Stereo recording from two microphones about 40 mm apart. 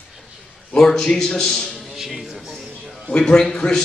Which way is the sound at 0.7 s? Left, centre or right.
Centre.